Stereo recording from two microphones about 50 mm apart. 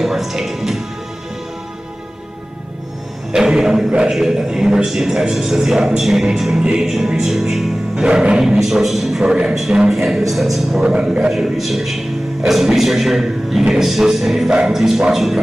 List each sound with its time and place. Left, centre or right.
0.0 s music: centre
3.3 s a man's voice: centre
7.9 s a man's voice: centre
9.2 s a man's voice: centre
10.8 s a man's voice: centre
11.3 s a man's voice: centre
14.5 s a man's voice: centre